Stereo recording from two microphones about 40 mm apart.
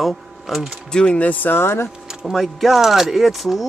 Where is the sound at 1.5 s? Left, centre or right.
Left.